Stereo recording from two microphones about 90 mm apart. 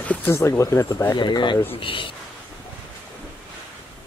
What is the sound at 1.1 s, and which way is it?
Speech, 60° left (ahead or behind).